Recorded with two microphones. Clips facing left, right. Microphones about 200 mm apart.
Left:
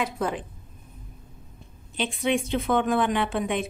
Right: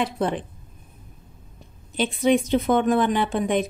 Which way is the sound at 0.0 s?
30° right (ahead or behind).